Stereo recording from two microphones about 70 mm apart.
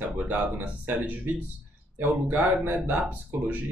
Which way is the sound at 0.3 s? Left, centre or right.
Right.